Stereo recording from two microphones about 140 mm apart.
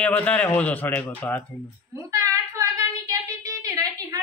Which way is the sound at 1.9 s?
20° right (ahead or behind).